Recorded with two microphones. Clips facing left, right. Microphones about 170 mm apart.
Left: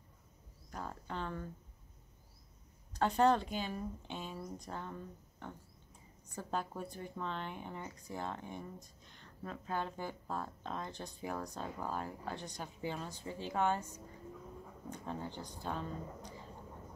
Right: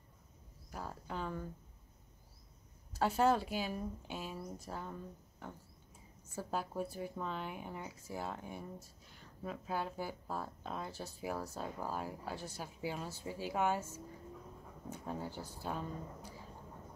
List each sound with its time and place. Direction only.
0.7 s speech: 5° right (ahead or behind)
2.9 s speech: 5° right (ahead or behind)
5.4 s a sound: 5° right (ahead or behind)
6.2 s speech: 5° right (ahead or behind)
14.9 s speech: 5° right (ahead or behind)